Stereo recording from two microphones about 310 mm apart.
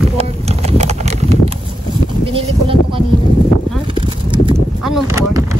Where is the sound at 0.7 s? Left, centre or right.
Right.